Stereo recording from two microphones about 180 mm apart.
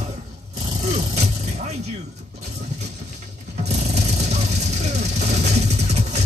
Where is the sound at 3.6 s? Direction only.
40° right (ahead or behind).